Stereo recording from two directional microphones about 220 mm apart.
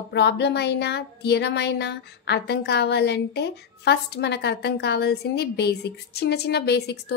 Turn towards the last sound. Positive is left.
turn(degrees=50)  # may be behind; listen again after turning